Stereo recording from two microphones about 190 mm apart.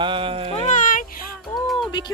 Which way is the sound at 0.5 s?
40° left (ahead or behind).